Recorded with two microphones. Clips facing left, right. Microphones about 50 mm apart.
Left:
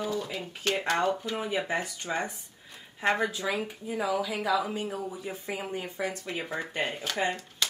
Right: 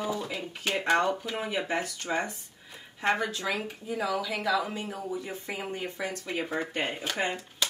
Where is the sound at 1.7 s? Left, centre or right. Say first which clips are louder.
Even; centre.